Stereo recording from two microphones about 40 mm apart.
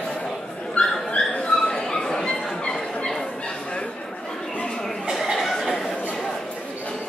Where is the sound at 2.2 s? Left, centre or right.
Left.